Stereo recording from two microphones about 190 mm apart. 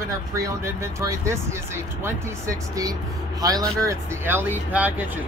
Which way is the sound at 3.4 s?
20° right (ahead or behind).